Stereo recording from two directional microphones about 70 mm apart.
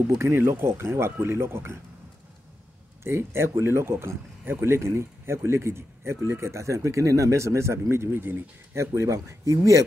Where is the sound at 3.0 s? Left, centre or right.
Right.